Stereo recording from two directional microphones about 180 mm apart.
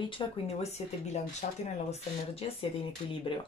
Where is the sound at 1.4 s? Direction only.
40° left (ahead or behind).